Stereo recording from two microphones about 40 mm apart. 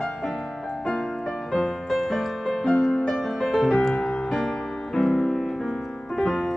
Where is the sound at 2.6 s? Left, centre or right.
Centre.